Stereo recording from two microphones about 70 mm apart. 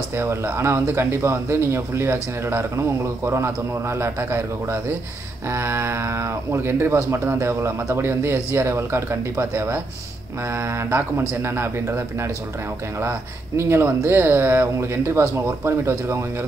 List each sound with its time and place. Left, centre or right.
0.2 s speech: right
10.9 s speech: right
13.6 s speech: right